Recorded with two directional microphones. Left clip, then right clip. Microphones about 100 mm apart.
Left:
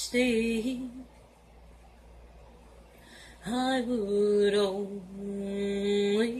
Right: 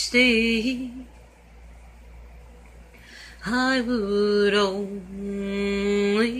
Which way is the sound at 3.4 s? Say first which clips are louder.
Right 7 dB; 5° left (ahead or behind).